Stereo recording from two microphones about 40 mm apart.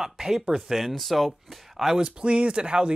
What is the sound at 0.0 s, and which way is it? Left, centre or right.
Speech, centre.